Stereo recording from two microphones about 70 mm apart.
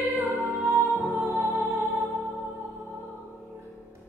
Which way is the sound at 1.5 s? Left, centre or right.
Right.